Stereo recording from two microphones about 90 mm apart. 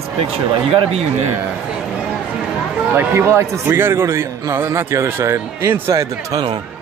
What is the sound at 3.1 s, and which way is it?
A man's voice, 30° right (ahead or behind).